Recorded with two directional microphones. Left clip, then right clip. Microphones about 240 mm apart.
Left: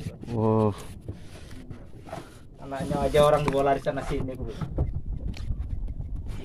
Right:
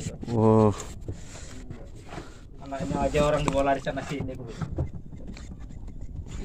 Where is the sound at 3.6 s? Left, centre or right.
Left.